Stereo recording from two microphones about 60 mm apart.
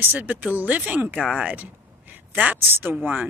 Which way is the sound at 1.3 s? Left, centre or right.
Centre.